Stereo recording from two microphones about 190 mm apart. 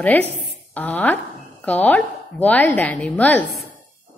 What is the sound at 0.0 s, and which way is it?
A woman's voice, 10° left (ahead or behind).